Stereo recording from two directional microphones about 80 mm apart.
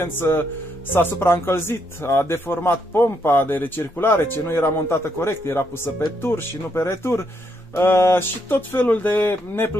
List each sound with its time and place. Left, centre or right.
0.0 s speech: left